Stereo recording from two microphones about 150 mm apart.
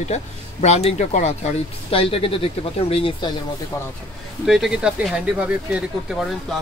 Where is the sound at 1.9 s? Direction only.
40° left (ahead or behind).